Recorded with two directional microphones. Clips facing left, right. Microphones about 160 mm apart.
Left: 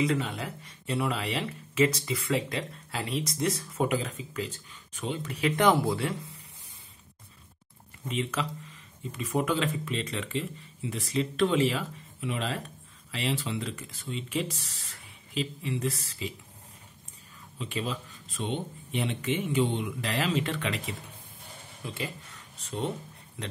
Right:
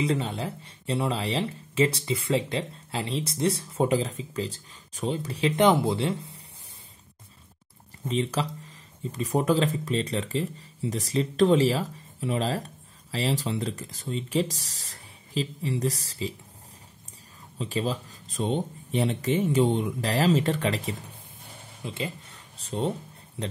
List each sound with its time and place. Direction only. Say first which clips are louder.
0.0 s speech: right 1 dB; 30° right (ahead or behind)
8.0 s speech: right 4 dB; 35° right (ahead or behind)
17.6 s speech: right 5 dB; 35° right (ahead or behind)
21.8 s speech: right 3 dB; 25° right (ahead or behind)